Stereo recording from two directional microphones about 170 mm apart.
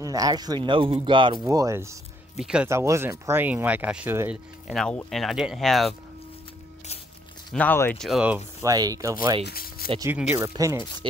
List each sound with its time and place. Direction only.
0.0 s speech: 20° right (ahead or behind)
2.3 s speech: 5° right (ahead or behind)
2.7 s speech: 15° right (ahead or behind); by 5.9 s centre (ahead or behind)
7.5 s speech: 10° left (ahead or behind)
8.0 s speech: 5° right (ahead or behind)
8.6 s speech: 20° right (ahead or behind)
9.4 s a sound: 65° left (ahead or behind)
10.3 s speech: 20° right (ahead or behind)